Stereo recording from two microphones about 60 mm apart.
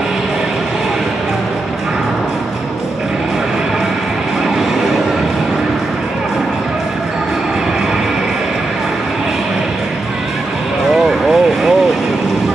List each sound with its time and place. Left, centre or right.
11.1 s vehicle: centre